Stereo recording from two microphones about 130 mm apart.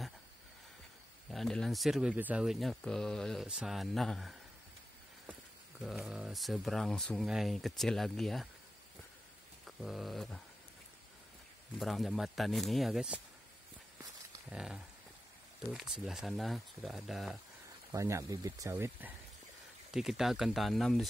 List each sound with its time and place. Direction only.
1.3 s speech: 5° left (ahead or behind); by 2.4 s 15° right (ahead or behind)
2.4 s speech: centre (ahead or behind)
5.9 s speech: 5° right (ahead or behind)
9.7 s a sound: centre (ahead or behind)
11.8 s speech: centre (ahead or behind)
14.5 s speech: 5° right (ahead or behind)
17.9 s speech: 25° right (ahead or behind)
19.9 s speech: 5° right (ahead or behind)